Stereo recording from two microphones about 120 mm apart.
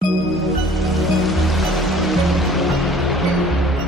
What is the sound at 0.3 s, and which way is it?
Music, centre (ahead or behind).